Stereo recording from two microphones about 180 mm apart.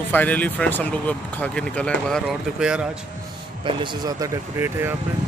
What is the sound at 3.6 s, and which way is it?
Speech, 25° right (ahead or behind).